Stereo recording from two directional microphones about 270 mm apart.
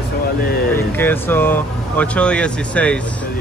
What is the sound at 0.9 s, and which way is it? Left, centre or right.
Speech, centre.